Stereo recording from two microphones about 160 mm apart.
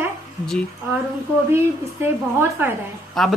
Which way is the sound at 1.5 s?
15° right (ahead or behind).